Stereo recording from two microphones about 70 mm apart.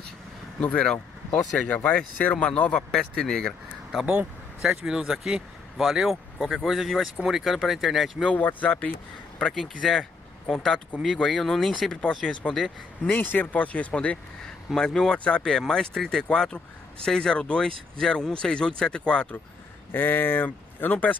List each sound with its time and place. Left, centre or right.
0.6 s speech: centre
4.0 s speech: centre
8.3 s speech: left
9.4 s speech: centre
13.1 s speech: left
19.9 s speech: left